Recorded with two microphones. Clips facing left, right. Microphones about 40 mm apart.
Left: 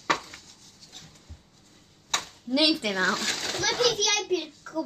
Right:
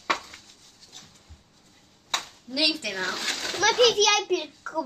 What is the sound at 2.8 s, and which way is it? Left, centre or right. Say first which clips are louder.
Speech: left 4 dB; centre.